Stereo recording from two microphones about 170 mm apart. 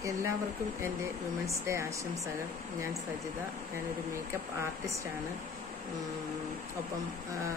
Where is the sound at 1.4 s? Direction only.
15° right (ahead or behind).